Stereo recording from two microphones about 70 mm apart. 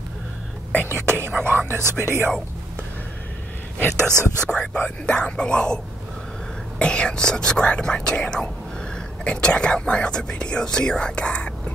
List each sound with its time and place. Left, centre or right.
0.8 s speech: right
3.8 s speech: right
4.5 s speech: centre
6.8 s speech: centre